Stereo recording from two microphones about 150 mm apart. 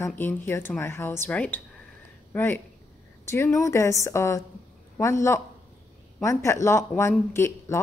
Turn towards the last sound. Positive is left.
turn(degrees=15)  # may be behind; listen again after turning